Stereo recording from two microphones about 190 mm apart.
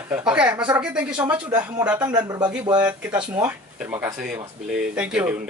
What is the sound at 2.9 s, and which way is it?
Speech, 5° right (ahead or behind).